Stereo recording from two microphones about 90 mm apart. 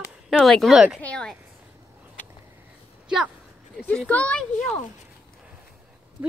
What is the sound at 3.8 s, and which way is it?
Speech, 15° left (ahead or behind).